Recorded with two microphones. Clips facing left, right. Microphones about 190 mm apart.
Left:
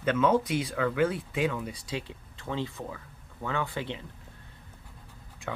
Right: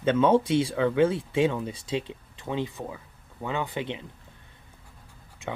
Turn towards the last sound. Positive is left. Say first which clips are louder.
# right 2 dB
turn(degrees=-20)  # may be behind; listen again after turning